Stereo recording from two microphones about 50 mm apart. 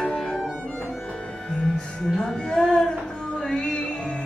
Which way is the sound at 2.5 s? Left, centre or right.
Centre.